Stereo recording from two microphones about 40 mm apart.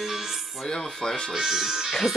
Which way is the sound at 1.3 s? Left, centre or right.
Centre.